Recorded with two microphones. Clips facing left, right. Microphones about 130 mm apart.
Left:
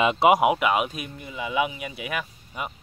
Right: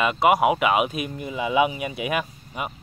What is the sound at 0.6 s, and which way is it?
Speech, 5° right (ahead or behind).